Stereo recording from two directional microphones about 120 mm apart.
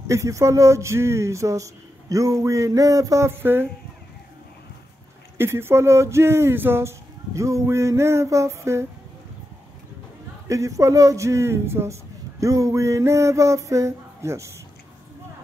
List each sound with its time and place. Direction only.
0.0 s a man's voice: 25° right (ahead or behind)
5.4 s a man's voice: 20° right (ahead or behind)
10.5 s a man's voice: 25° right (ahead or behind)